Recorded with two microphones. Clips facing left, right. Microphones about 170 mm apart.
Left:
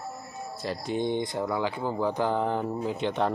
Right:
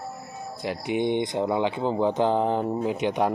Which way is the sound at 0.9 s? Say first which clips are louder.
Right 4 dB; 20° right (ahead or behind).